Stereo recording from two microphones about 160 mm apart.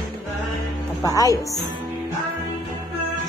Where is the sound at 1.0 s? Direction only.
20° left (ahead or behind).